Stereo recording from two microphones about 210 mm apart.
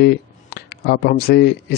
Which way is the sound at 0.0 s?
50° left (ahead or behind).